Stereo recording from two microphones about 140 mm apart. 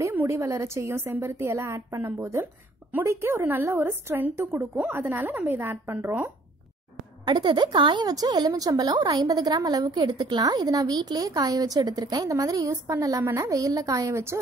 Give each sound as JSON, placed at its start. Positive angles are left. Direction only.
{"t": 0.0, "sound": "a woman's voice", "side_deg": -20}
{"t": 7.2, "sound": "a woman's voice", "side_deg": -30}